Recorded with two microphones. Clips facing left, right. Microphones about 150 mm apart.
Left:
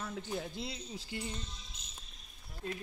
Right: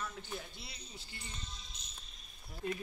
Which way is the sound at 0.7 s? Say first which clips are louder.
Left 10 dB; 90° left.